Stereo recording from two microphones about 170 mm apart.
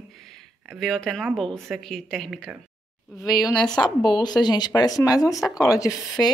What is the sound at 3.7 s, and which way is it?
A woman's voice, 25° left (ahead or behind).